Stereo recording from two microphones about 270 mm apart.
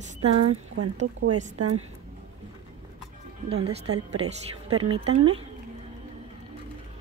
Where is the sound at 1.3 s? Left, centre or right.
Right.